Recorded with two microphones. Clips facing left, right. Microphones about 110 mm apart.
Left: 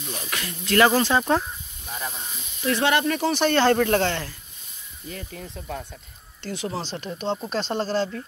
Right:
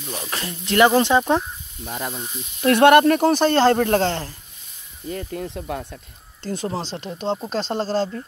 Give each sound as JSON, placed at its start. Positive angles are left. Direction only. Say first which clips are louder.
{"t": 0.2, "sound": "speech", "louder": "right 2 dB", "side_deg": -30}
{"t": 1.9, "sound": "speech", "louder": "right 4 dB", "side_deg": -65}
{"t": 5.1, "sound": "speech", "louder": "right 9 dB", "side_deg": -50}
{"t": 5.5, "sound": "speech", "louder": "right 5 dB", "side_deg": -75}
{"t": 6.4, "sound": "speech", "louder": "right 3 dB", "side_deg": -40}